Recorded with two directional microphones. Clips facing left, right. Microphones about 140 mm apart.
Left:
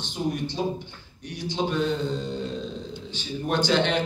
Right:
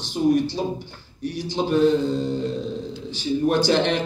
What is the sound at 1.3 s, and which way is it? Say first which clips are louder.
Speech: right 5 dB; 40° right (ahead or behind).